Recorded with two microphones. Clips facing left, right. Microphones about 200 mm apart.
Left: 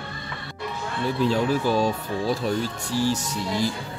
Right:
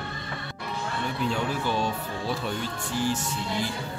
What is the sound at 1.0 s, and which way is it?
Speech, 35° left (ahead or behind).